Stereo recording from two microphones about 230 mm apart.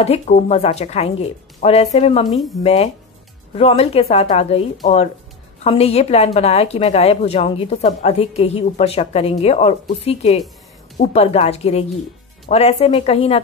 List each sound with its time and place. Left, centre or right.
0.0 s a woman's voice: left
2.2 s speech: centre
2.6 s a woman's voice: left